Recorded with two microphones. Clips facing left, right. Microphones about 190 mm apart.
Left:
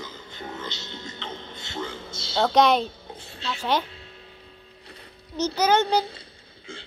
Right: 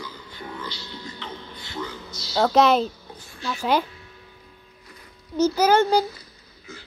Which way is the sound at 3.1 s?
25° left (ahead or behind).